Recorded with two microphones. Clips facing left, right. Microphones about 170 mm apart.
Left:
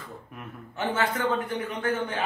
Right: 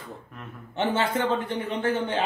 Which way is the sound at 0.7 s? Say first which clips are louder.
Right 3 dB; 30° right (ahead or behind).